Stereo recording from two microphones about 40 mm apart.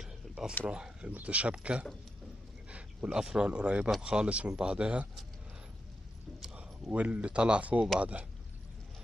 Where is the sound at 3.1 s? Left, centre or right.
Centre.